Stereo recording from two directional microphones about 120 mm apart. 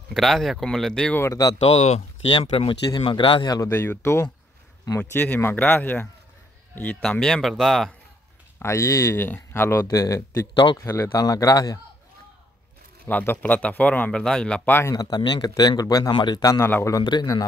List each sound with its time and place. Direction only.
0.1 s speech: centre (ahead or behind)
1.2 s speech: 30° left (ahead or behind)
1.6 s speech: 65° left (ahead or behind)
2.2 s speech: 45° left (ahead or behind)
3.7 s speech: 20° left (ahead or behind); by 7.9 s centre (ahead or behind)
8.5 s speech: 25° left (ahead or behind)
10.5 s speech: 40° left (ahead or behind)
10.8 s speech: 20° left (ahead or behind)
13.0 s speech: 15° left (ahead or behind)
15.0 s speech: 35° left (ahead or behind)
16.6 s speech: 20° left (ahead or behind)
16.9 s speech: 40° left (ahead or behind)